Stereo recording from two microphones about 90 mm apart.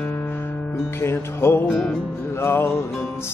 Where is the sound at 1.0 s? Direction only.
30° left (ahead or behind).